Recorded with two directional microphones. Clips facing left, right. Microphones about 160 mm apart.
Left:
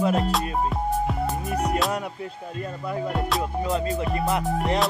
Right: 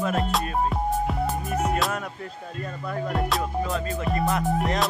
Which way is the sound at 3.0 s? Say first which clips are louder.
Right 1 dB; centre (ahead or behind).